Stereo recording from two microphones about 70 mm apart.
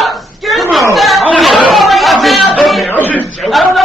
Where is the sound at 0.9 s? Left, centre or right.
Centre.